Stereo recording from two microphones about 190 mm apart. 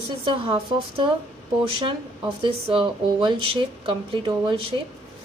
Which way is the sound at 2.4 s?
30° right (ahead or behind).